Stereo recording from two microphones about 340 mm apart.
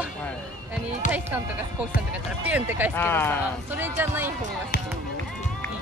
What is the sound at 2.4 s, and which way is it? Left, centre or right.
Speech, centre.